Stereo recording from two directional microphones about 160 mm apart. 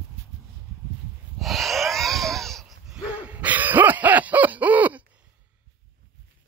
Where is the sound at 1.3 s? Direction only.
Centre (ahead or behind).